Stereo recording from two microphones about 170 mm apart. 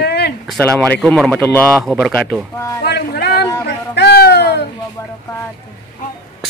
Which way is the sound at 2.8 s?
75° left (ahead or behind).